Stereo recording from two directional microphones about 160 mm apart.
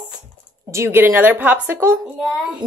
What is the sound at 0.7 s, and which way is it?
A woman's voice, 15° right (ahead or behind).